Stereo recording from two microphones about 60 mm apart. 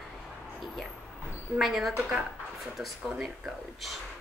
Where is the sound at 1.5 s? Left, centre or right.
Centre.